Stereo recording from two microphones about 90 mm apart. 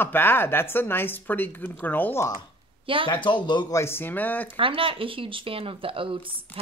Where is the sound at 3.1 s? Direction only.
60° left (ahead or behind).